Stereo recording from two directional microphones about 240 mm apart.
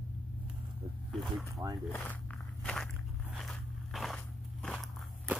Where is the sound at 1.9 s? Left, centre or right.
Centre.